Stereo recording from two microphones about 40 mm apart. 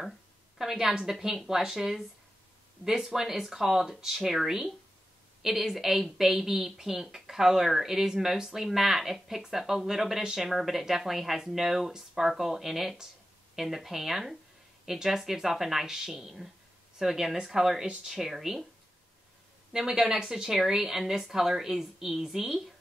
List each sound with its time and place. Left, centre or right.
0.6 s a woman's voice: centre
19.7 s speech: centre